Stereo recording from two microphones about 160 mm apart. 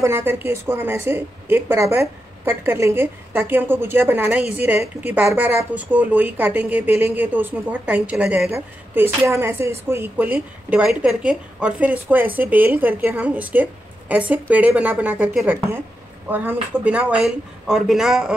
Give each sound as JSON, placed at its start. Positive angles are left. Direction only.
{"t": 0.0, "sound": "a woman's voice", "side_deg": -15}